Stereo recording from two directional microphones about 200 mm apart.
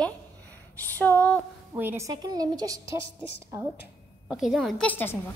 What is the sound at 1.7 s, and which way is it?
A woman's voice, 10° right (ahead or behind).